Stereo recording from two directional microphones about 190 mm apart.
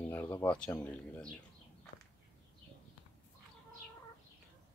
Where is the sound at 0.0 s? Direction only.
10° left (ahead or behind).